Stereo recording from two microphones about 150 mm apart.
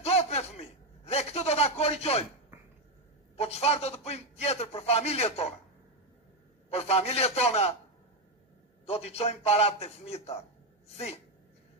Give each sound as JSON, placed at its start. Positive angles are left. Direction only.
{"t": 0.0, "sound": "a sound", "side_deg": 45}
{"t": 3.3, "sound": "a man's voice", "side_deg": 45}
{"t": 6.7, "sound": "a man's voice", "side_deg": 45}
{"t": 8.8, "sound": "a man's voice", "side_deg": 45}